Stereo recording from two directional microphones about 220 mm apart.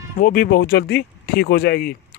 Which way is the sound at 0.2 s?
40° left (ahead or behind).